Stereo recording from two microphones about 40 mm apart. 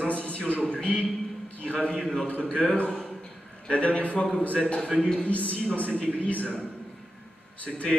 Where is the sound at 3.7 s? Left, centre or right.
Left.